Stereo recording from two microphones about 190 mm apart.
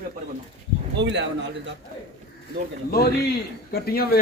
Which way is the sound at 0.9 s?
65° right (ahead or behind).